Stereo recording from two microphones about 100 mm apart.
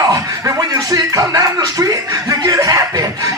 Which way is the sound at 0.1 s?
40° right (ahead or behind).